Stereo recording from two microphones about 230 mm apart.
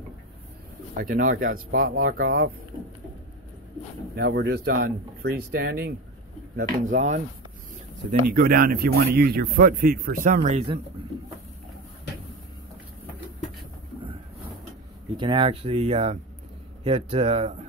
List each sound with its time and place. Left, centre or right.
0.9 s speech: right
4.1 s speech: right
15.1 s speech: right